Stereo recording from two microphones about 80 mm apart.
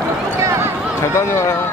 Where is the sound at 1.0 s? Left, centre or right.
Left.